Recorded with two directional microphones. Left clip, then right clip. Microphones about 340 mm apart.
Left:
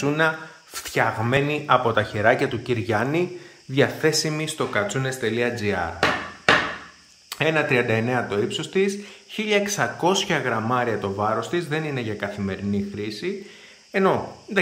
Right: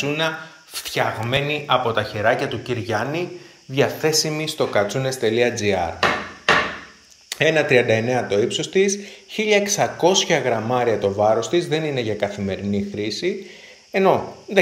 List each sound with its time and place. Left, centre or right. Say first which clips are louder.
0.0 s speech: left 1 dB; centre
7.2 s speech: right 4 dB; centre